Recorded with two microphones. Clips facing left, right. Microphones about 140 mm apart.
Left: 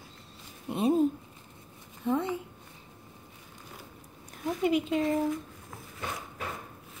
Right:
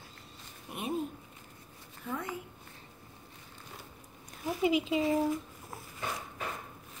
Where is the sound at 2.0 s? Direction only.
25° left (ahead or behind).